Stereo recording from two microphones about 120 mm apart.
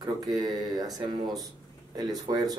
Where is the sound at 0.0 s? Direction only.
35° right (ahead or behind).